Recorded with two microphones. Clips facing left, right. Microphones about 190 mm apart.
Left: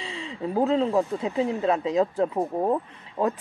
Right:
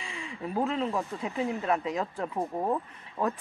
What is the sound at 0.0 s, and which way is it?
A woman's voice, 25° left (ahead or behind).